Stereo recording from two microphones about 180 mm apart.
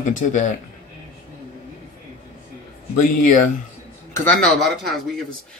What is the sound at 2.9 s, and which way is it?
Speech, 45° left (ahead or behind).